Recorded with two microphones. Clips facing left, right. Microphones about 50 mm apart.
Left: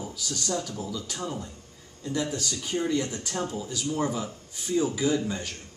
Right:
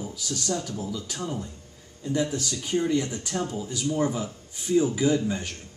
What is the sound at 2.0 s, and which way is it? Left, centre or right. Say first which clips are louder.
A man's voice: right 3 dB; centre.